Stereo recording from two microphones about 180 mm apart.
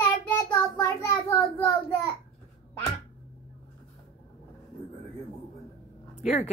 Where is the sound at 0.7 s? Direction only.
15° left (ahead or behind).